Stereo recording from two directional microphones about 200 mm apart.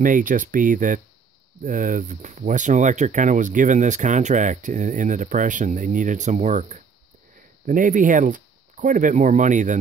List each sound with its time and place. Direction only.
0.0 s speech: 40° right (ahead or behind)